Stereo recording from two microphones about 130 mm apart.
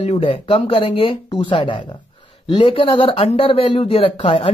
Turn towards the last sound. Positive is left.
turn(degrees=45)  # may be behind; listen again after turning